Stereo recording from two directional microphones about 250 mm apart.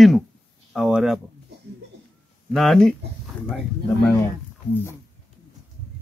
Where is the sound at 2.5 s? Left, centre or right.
Centre.